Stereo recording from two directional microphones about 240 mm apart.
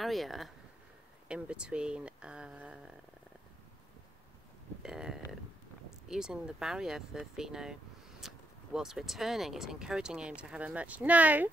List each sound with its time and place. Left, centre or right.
0.0 s speech: centre
4.8 s speech: centre